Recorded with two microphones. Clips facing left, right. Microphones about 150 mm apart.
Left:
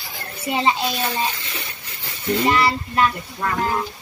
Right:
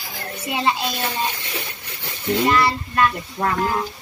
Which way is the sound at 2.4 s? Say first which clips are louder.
Even; 10° left (ahead or behind).